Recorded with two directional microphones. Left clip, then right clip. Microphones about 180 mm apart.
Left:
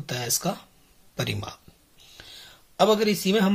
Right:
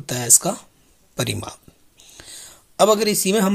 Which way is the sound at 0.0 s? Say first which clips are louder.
Right 8 dB; 40° right (ahead or behind).